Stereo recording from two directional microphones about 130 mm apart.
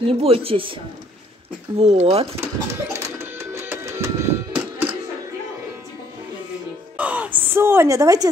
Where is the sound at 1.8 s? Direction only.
55° right (ahead or behind).